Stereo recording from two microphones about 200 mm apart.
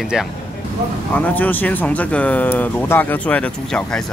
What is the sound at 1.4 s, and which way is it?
Speech, 10° left (ahead or behind).